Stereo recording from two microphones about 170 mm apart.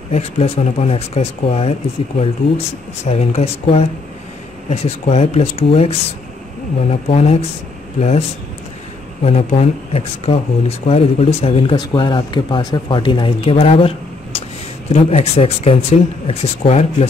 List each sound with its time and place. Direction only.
0.1 s speech: 40° left (ahead or behind)
9.2 s speech: 40° left (ahead or behind)